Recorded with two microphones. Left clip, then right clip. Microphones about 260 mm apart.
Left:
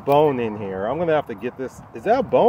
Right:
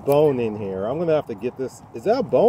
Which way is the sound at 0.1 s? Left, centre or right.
Centre.